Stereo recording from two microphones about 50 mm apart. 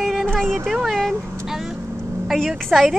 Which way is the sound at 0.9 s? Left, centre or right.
Centre.